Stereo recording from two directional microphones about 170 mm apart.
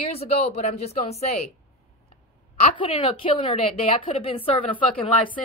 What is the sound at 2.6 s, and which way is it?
Speech, 35° left (ahead or behind).